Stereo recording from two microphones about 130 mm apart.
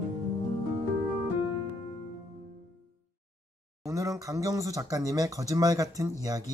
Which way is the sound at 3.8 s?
25° right (ahead or behind).